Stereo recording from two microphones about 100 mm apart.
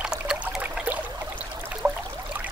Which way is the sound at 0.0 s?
5° right (ahead or behind).